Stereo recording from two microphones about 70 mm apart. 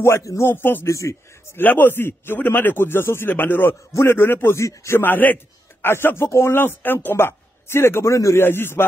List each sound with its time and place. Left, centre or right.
0.0 s a man's voice: left
0.8 s a man's voice: left
1.6 s a man's voice: left
5.0 s a man's voice: left
8.5 s a man's voice: left